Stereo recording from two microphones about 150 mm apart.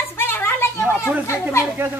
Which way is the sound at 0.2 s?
15° left (ahead or behind).